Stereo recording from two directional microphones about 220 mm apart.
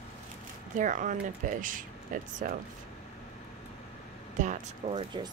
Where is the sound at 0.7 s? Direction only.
35° right (ahead or behind).